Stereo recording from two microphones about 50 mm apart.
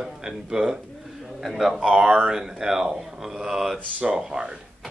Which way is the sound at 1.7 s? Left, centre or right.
Right.